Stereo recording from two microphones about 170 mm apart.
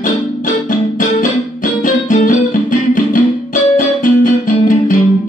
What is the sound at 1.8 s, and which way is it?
Music, 50° left (ahead or behind).